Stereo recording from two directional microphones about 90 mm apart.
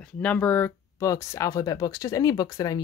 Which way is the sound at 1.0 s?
35° left (ahead or behind).